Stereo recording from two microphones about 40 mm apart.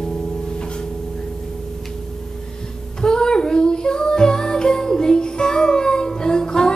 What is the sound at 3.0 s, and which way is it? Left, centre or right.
Music, centre.